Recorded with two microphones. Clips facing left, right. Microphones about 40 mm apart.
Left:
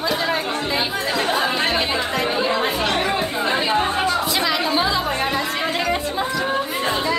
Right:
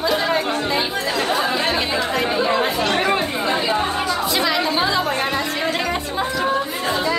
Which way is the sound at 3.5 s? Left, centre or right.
Centre.